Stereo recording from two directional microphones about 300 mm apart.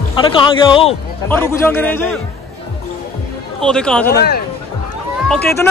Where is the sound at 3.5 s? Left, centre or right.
Centre.